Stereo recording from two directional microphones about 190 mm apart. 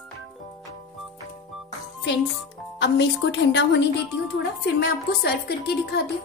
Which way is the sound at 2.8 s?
65° left (ahead or behind).